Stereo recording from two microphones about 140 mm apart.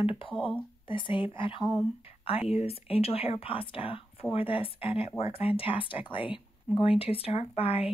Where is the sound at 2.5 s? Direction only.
45° left (ahead or behind).